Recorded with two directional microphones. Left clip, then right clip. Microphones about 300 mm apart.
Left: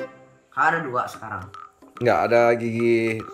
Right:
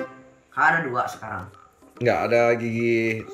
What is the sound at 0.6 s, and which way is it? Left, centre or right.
Speech, centre.